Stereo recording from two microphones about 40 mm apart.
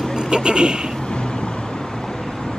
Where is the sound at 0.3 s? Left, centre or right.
Right.